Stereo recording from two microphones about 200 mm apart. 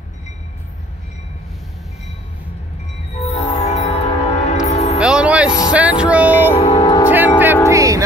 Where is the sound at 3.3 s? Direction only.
30° left (ahead or behind).